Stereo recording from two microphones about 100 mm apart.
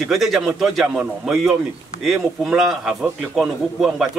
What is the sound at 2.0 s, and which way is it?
A man's voice, centre (ahead or behind).